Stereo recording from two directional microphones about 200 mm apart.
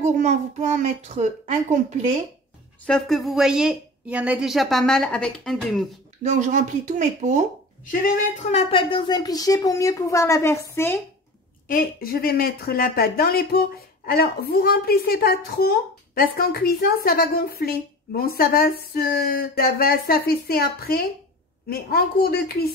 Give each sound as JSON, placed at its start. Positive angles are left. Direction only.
{"t": 0.0, "sound": "a child's voice", "side_deg": -35}
{"t": 2.9, "sound": "a woman's voice", "side_deg": 0}
{"t": 6.2, "sound": "a child's voice", "side_deg": -40}
{"t": 7.8, "sound": "a woman's voice", "side_deg": 40}
{"t": 11.6, "sound": "a woman's voice", "side_deg": 45}